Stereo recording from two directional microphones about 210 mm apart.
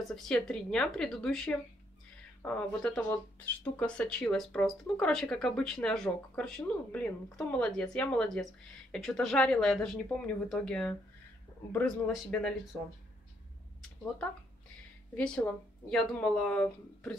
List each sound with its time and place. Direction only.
0.1 s speech: 5° left (ahead or behind)
15.1 s speech: 5° left (ahead or behind)